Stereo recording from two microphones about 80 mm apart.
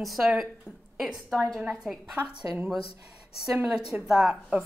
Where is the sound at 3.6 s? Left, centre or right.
Centre.